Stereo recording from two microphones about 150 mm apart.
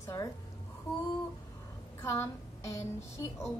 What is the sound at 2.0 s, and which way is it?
A woman's voice, 20° left (ahead or behind).